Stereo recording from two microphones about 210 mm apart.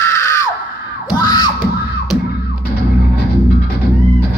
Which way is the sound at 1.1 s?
20° left (ahead or behind).